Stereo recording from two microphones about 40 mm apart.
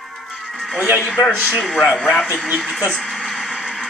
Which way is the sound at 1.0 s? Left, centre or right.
Centre.